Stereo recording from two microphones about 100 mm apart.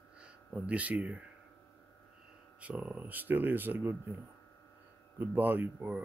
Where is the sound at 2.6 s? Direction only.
15° right (ahead or behind).